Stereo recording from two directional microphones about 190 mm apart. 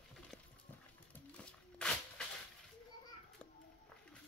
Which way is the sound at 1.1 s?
5° left (ahead or behind).